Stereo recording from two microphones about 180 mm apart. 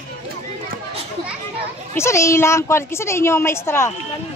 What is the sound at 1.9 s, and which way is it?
A woman's voice, 15° left (ahead or behind).